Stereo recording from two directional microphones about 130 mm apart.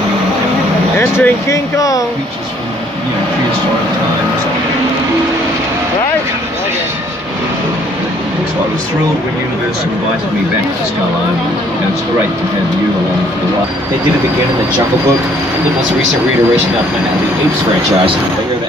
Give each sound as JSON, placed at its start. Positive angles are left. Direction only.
{"t": 0.9, "sound": "speech", "side_deg": 20}